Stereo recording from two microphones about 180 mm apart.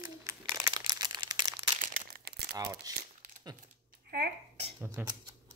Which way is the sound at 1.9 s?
60° right (ahead or behind).